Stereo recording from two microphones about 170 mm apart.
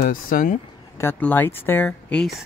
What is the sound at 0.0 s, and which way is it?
Speech, 55° left (ahead or behind).